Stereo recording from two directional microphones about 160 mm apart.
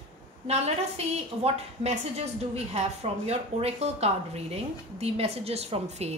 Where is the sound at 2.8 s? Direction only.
40° right (ahead or behind).